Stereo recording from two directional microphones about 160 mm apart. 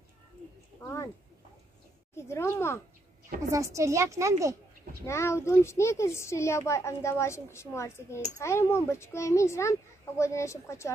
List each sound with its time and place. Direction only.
0.7 s a sound: 15° left (ahead or behind)
2.1 s speech: 15° left (ahead or behind)
3.4 s speech: 20° right (ahead or behind)
5.0 s speech: 15° left (ahead or behind)